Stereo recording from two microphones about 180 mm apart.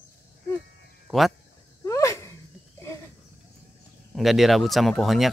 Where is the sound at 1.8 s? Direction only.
15° left (ahead or behind).